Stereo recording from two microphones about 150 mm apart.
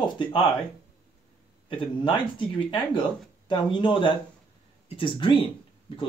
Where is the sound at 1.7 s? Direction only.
35° left (ahead or behind).